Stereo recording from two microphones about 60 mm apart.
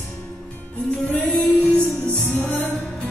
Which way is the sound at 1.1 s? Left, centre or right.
Left.